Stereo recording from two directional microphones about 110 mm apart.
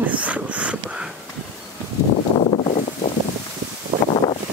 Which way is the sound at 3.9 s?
50° right (ahead or behind).